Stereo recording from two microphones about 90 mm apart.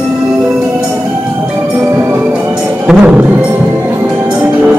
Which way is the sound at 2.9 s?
5° right (ahead or behind).